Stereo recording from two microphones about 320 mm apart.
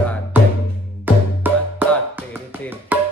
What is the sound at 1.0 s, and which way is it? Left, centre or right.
Music, centre.